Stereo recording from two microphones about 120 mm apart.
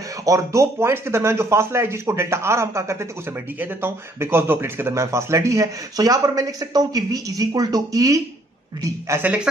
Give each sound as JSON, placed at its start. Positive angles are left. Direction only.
{"t": 0.2, "sound": "a man's voice", "side_deg": -25}
{"t": 9.2, "sound": "a man's voice", "side_deg": -10}